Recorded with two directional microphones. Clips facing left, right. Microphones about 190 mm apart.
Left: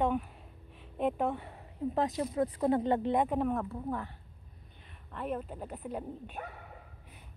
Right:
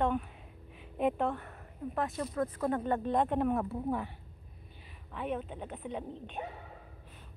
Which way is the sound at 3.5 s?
15° right (ahead or behind).